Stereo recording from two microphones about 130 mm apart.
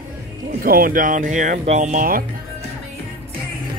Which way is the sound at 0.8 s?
90° right.